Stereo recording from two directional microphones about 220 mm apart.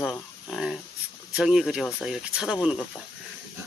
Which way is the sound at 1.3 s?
Centre (ahead or behind).